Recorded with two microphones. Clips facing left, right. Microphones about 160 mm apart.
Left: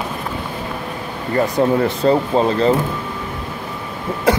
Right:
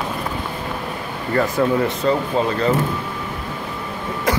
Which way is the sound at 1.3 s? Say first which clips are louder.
Left 2 dB; 30° left (ahead or behind).